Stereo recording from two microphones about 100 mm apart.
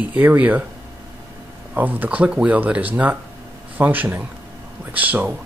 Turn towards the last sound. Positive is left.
turn(degrees=-15)  # may be behind; listen again after turning